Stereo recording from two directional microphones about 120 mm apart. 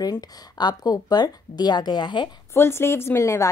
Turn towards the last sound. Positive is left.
turn(degrees=25)  # may be behind; listen again after turning